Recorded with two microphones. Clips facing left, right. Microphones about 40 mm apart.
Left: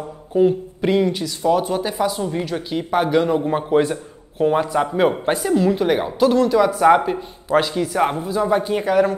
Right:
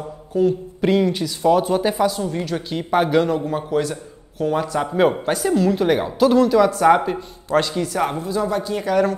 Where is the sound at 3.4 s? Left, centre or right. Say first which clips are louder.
Left 4 dB; left.